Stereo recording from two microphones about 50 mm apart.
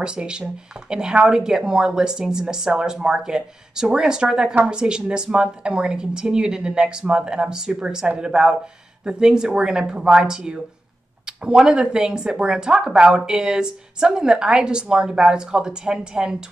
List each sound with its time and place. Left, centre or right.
0.0 s speech: centre